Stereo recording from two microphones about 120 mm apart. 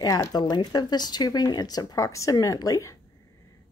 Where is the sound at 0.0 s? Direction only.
30° left (ahead or behind).